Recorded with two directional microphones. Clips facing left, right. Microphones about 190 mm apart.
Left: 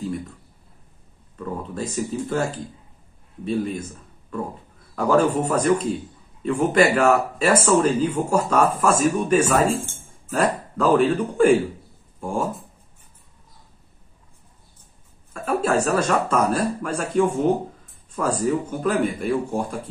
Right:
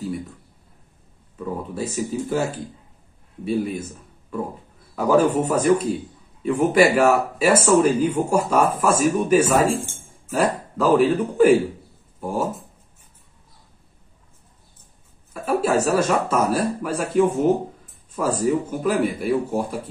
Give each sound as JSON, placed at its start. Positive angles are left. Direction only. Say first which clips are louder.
{"t": 1.4, "sound": "speech", "louder": "right 1 dB", "side_deg": -10}
{"t": 3.4, "sound": "speech", "louder": "right 1 dB", "side_deg": -10}
{"t": 4.9, "sound": "speech", "louder": "right 1 dB", "side_deg": -10}
{"t": 15.3, "sound": "speech", "louder": "right 1 dB", "side_deg": -5}